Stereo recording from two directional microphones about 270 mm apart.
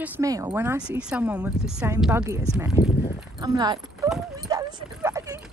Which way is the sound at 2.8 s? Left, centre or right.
Left.